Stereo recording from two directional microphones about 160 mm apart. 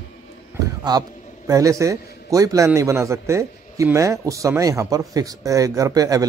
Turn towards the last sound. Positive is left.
turn(degrees=-20)  # may be behind; listen again after turning